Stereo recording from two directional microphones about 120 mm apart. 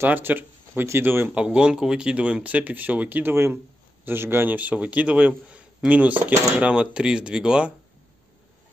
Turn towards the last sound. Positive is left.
turn(degrees=-5)  # may be behind; listen again after turning